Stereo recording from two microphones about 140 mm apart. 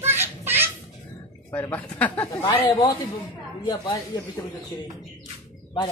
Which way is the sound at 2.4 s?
35° left (ahead or behind).